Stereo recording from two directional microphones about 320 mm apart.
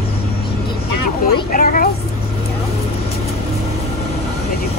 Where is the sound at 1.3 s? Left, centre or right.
Left.